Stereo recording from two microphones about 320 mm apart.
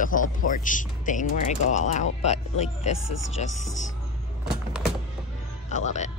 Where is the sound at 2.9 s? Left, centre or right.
Left.